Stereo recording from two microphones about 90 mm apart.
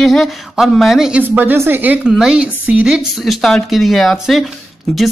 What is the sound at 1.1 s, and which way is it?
A woman's voice, 20° right (ahead or behind).